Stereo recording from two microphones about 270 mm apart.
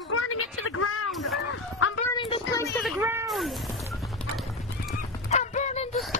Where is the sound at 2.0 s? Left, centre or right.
Centre.